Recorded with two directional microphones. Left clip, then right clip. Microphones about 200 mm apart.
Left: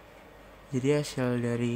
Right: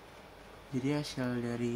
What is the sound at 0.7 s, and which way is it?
Speech, 50° left (ahead or behind).